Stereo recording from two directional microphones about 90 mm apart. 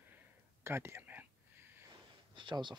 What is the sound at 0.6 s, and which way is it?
Whispering, 25° right (ahead or behind).